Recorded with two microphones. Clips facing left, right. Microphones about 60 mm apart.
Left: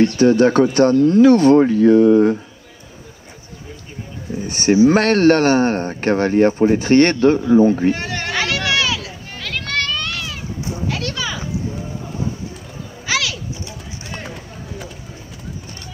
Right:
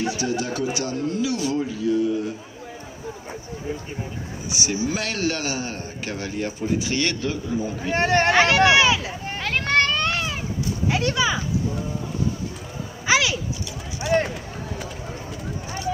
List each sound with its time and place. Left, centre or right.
0.2 s speech: left
4.4 s speech: left
7.9 s a sound: right
13.0 s pigeon: right
14.2 s run: centre